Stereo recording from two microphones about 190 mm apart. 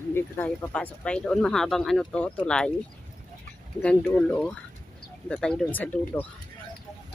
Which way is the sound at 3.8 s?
5° left (ahead or behind).